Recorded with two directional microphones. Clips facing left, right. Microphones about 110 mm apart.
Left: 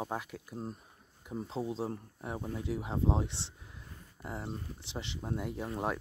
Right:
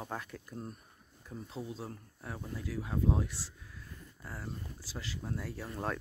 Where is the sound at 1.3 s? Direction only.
30° left (ahead or behind).